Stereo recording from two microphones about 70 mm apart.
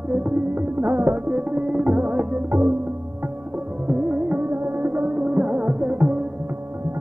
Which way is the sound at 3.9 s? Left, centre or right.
Right.